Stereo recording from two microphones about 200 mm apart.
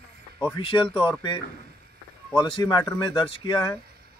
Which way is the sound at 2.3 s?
20° left (ahead or behind).